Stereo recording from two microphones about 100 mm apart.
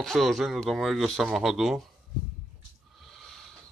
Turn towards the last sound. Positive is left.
turn(degrees=0)  # may be behind; listen again after turning